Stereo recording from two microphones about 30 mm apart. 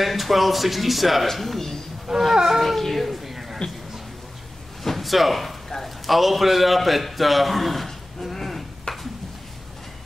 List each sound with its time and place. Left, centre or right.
0.0 s speech: centre
2.0 s speech: centre
2.6 s speech: centre
3.3 s music: centre
4.8 s a sound: centre
5.8 s a man's voice: centre
8.9 s a sound: left